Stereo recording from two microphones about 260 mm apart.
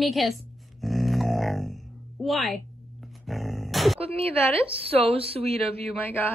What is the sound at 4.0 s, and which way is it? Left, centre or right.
Speech, right.